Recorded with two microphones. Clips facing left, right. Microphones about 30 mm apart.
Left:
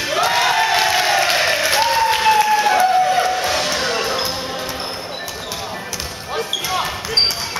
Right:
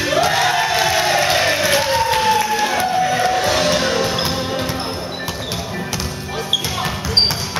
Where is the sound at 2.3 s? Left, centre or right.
Left.